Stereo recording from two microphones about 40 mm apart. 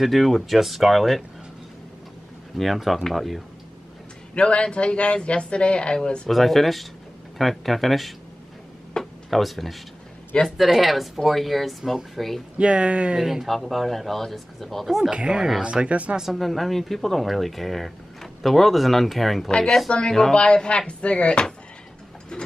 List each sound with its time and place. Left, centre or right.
0.0 s speech: centre
2.5 s speech: centre
4.4 s speech: left
6.2 s speech: centre
9.0 s a sound: centre
9.3 s speech: centre
12.5 s speech: right
13.2 s speech: centre
15.0 s speech: right
16.3 s speech: centre
20.1 s speech: centre
20.3 s speech: left